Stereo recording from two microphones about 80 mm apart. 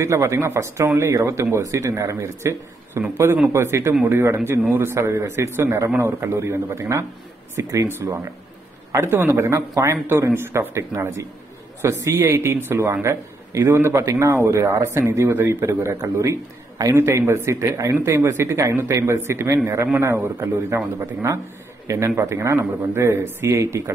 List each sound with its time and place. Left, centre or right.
0.0 s a man's voice: right
8.9 s a man's voice: right